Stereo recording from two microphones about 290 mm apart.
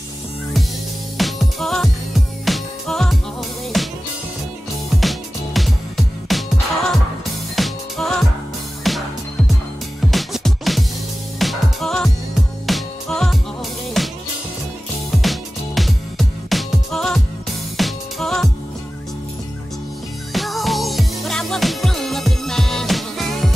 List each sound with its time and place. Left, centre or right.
1.1 s music: centre
5.0 s music: centre
7.5 s music: centre
10.1 s music: centre
15.2 s music: centre
20.3 s music: centre